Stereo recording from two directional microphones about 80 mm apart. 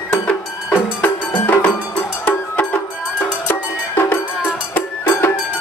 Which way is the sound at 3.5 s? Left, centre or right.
Left.